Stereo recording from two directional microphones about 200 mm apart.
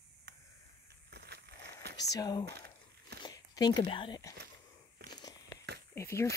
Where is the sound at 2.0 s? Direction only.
20° left (ahead or behind).